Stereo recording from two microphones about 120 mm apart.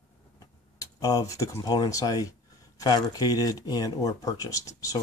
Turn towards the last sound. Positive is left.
turn(degrees=30)  # may be behind; listen again after turning